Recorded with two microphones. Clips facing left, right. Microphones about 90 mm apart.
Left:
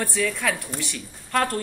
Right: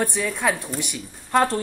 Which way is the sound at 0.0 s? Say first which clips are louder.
Right 2 dB; 20° right (ahead or behind).